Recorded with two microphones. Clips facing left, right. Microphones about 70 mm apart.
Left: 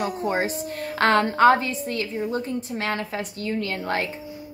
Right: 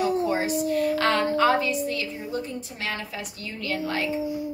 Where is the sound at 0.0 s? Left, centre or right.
Left.